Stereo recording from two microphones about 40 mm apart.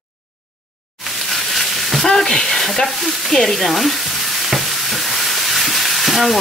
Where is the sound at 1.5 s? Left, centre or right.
Centre.